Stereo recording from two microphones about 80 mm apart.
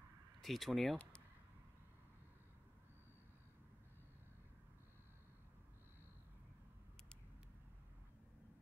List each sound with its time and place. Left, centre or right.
0.4 s speech: centre